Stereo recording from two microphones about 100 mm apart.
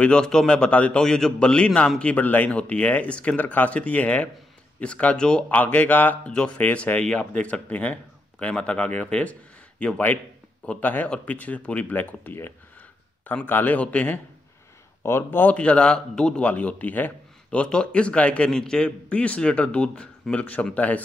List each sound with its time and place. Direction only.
0.0 s speech: 10° left (ahead or behind)